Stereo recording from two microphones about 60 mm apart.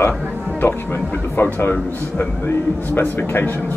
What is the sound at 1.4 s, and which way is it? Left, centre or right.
Speech, left.